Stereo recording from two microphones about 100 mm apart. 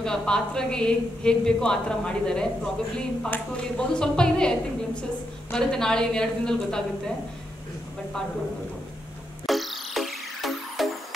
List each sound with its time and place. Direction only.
0.0 s a woman's voice: 5° left (ahead or behind)
9.5 s music: centre (ahead or behind)